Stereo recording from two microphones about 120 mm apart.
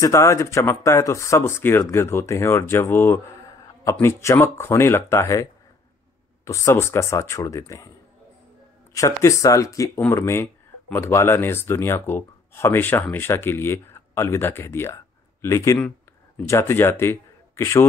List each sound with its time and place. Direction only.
0.0 s speech: 25° left (ahead or behind)
8.9 s speech: 25° left (ahead or behind)